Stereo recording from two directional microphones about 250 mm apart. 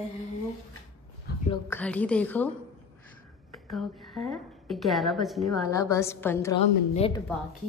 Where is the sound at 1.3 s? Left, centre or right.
Left.